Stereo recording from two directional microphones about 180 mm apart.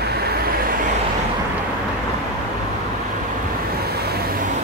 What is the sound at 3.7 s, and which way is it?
Vehicle, 60° right (ahead or behind).